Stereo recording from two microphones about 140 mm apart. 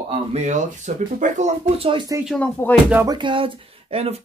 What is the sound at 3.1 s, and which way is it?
Speech, 35° right (ahead or behind).